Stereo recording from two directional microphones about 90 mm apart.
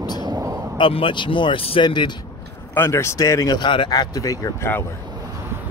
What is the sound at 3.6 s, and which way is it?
Speech, 65° left (ahead or behind).